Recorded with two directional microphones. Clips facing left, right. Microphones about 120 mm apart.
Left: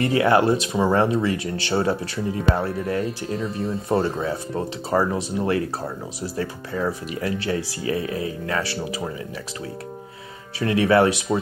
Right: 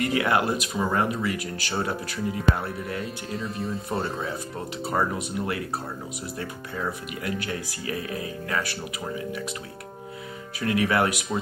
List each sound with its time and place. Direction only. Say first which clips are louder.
0.0 s speech: left 6 dB; 30° left (ahead or behind)
4.8 s speech: left 4 dB; 30° left (ahead or behind)
10.6 s speech: left 6 dB; 30° left (ahead or behind)